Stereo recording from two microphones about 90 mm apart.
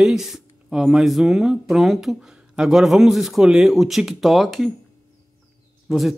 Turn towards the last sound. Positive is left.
turn(degrees=0)  # may be behind; listen again after turning